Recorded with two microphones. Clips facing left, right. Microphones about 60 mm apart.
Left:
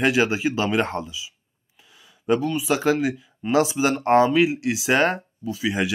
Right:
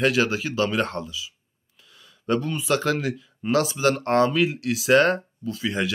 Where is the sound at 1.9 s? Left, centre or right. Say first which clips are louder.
Left 3 dB; centre.